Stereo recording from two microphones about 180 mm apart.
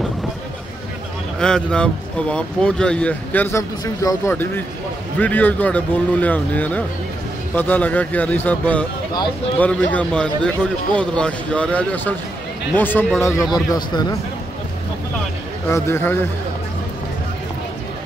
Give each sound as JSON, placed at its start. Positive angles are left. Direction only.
{"t": 1.4, "sound": "speech", "side_deg": 5}
{"t": 3.8, "sound": "a man's voice", "side_deg": 20}
{"t": 15.7, "sound": "a man's voice", "side_deg": 10}